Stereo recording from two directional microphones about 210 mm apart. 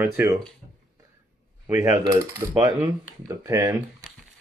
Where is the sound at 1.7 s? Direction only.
15° right (ahead or behind).